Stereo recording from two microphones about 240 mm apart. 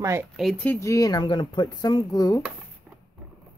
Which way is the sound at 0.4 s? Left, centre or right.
Centre.